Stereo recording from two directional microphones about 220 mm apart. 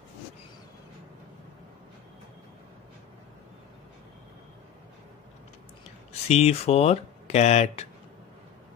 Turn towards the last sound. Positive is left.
turn(degrees=30)  # may be behind; listen again after turning